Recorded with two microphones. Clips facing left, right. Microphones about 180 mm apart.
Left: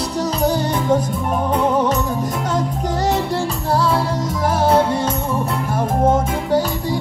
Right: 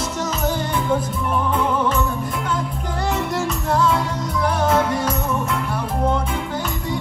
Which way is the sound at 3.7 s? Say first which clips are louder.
Left 2 dB; 35° left (ahead or behind).